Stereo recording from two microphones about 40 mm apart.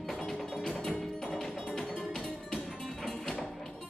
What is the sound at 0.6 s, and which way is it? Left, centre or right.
Music, centre.